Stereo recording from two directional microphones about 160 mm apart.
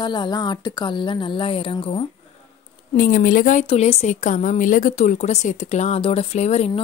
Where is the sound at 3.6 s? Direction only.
40° left (ahead or behind).